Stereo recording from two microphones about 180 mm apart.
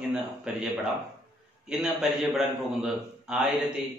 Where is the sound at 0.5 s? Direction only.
5° right (ahead or behind).